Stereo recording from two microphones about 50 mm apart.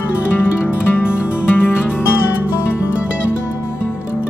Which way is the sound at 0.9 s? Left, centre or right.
Left.